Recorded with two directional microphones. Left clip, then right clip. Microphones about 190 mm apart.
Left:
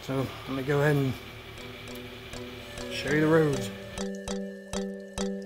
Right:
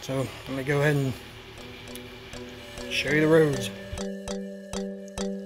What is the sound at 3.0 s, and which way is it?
Speech, 15° right (ahead or behind).